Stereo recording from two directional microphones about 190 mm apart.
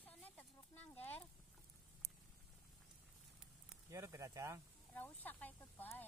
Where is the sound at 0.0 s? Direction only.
10° left (ahead or behind).